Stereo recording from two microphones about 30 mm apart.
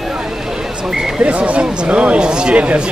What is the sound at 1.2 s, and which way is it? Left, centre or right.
Speech, right.